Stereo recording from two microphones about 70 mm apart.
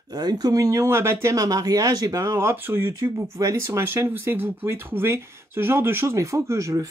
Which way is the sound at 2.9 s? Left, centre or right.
Right.